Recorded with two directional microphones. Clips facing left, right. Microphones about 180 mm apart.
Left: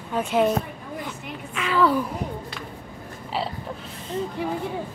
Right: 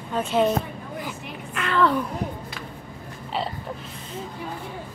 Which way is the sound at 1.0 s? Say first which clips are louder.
Left 1 dB; centre (ahead or behind).